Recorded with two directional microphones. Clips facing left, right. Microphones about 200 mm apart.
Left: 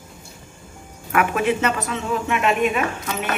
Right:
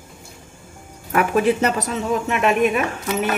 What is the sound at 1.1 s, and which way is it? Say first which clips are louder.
A woman's voice: right 3 dB; 35° right (ahead or behind).